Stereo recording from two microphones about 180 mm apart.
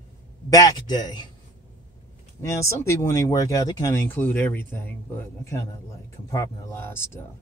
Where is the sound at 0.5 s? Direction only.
20° left (ahead or behind).